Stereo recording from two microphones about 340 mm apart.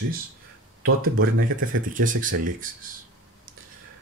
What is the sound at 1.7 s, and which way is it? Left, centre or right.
Speech, right.